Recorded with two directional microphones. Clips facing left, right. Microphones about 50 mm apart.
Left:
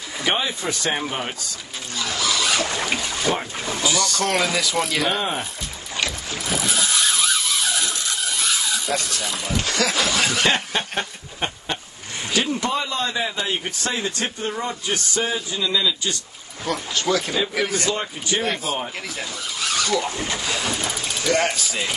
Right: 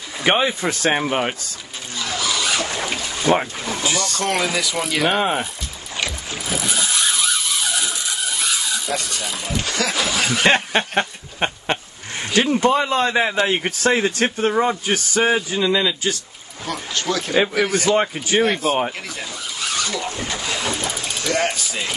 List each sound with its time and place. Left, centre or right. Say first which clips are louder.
0.2 s a man's voice: right 5 dB; right
2.0 s a sound: even; centre
3.8 s a man's voice: left 1 dB; right
4.2 s speech: right 2 dB; centre
5.9 s vehicle: even; centre
10.5 s a sound: right 5 dB; right
12.4 s a man's voice: right 6 dB; right
14.5 s a man's voice: right 7 dB; right
16.6 s speech: left 1 dB; centre
17.8 s a man's voice: right 6 dB; right
18.4 s speech: right 8 dB; centre
19.6 s a sound: left 2 dB; centre
20.5 s boat: right 1 dB; centre